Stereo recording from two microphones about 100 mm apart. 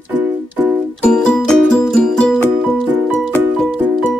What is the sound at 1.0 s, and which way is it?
Music, 10° left (ahead or behind).